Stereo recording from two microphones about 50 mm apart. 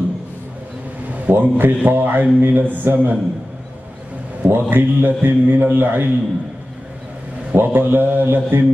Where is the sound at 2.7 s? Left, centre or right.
Right.